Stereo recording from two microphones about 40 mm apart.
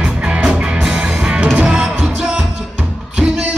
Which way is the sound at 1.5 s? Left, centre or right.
Right.